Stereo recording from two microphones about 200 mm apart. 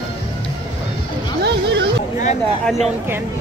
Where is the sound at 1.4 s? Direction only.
55° right (ahead or behind).